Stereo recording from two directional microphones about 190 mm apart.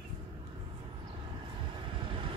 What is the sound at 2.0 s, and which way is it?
Vehicle, 25° right (ahead or behind).